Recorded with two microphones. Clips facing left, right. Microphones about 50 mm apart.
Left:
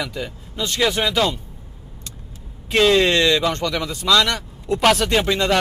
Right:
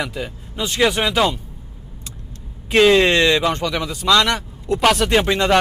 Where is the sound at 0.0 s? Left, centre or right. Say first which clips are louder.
Right 2 dB; centre.